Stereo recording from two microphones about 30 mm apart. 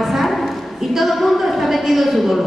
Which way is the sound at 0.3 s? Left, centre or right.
Centre.